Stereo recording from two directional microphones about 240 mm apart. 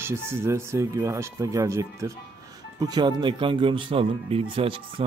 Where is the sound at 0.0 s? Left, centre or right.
Centre.